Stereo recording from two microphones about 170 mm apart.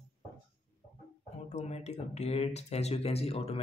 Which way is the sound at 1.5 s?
40° left (ahead or behind).